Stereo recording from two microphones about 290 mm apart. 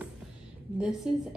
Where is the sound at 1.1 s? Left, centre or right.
Centre.